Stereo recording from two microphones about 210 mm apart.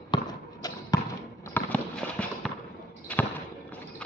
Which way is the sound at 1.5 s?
5° left (ahead or behind).